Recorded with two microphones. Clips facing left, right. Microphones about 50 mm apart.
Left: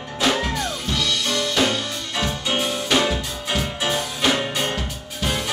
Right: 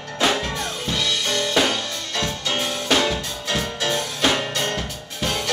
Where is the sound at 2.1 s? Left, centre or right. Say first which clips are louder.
Left 1 dB; centre.